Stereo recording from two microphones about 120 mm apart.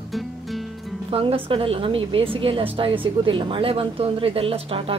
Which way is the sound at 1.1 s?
50° right (ahead or behind).